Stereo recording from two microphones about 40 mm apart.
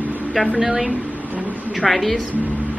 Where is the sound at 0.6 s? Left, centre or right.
Right.